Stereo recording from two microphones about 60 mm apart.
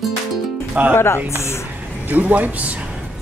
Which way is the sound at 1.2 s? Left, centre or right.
Left.